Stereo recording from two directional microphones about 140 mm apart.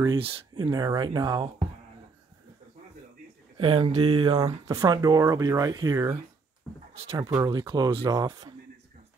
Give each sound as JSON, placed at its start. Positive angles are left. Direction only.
{"t": 0.2, "sound": "speech", "side_deg": -35}
{"t": 3.5, "sound": "speech", "side_deg": -40}